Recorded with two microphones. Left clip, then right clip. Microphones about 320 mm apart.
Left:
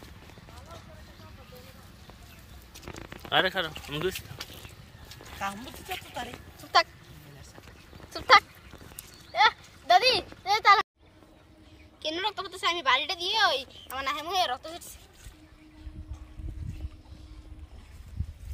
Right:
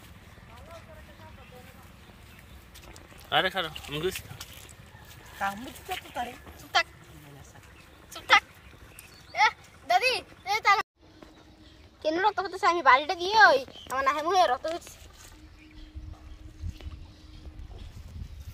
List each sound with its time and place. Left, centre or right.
3.3 s speech: centre
5.4 s speech: centre
6.7 s speech: centre
9.3 s a sound: centre
12.0 s a woman's voice: centre